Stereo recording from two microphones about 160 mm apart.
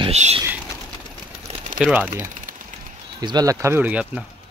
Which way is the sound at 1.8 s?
10° right (ahead or behind).